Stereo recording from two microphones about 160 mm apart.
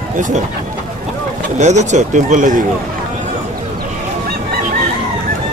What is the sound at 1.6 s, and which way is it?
Speech, 45° right (ahead or behind).